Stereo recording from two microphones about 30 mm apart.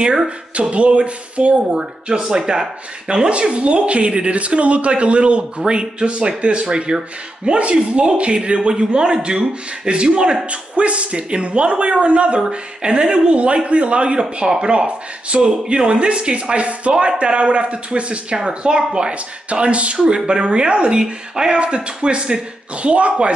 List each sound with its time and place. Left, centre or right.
0.6 s speech: right
1.7 s speech: right
3.1 s a man's voice: right
10.4 s a man's voice: right
12.4 s a man's voice: right
14.5 s speech: right
14.9 s a man's voice: right
19.1 s a man's voice: right